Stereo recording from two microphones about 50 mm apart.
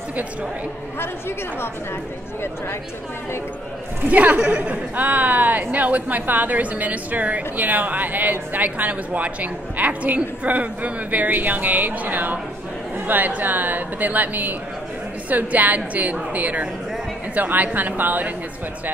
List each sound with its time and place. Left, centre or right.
4.1 s a woman's voice: right